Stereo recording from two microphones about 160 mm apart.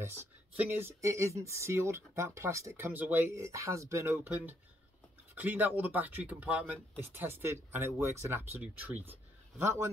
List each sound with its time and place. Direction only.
0.0 s speech: 15° right (ahead or behind)